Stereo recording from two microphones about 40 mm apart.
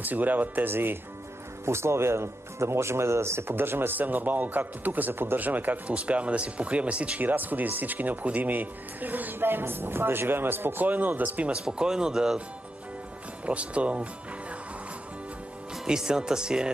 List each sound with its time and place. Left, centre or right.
0.0 s speech: right
0.7 s speech: right
1.7 s speech: right
4.0 s speech: right
5.9 s speech: right
7.2 s speech: right
10.9 s speech: right
11.6 s speech: centre
13.5 s speech: right
15.9 s speech: centre